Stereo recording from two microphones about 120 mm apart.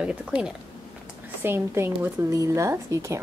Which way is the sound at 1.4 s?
20° right (ahead or behind).